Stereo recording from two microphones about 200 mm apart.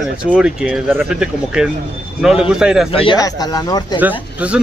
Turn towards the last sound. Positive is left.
turn(degrees=-5)  # may be behind; listen again after turning